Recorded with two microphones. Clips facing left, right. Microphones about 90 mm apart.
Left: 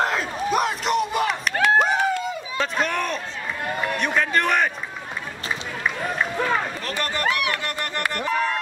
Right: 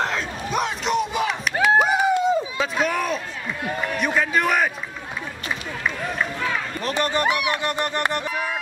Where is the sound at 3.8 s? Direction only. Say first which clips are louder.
Even; centre (ahead or behind).